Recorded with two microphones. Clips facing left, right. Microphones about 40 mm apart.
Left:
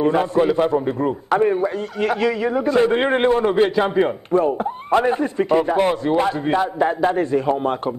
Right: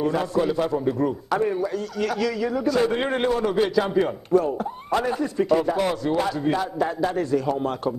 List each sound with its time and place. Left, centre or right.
0.0 s a man's voice: left